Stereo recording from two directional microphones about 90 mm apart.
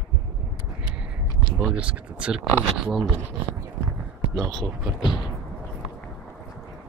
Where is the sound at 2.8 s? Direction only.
Centre (ahead or behind).